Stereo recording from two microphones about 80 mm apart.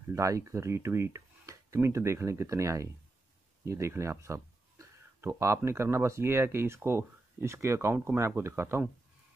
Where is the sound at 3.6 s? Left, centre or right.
Right.